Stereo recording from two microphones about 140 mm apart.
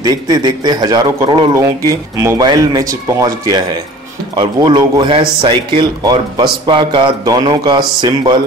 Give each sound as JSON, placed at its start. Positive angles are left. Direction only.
{"t": 0.0, "sound": "a man's voice", "side_deg": -25}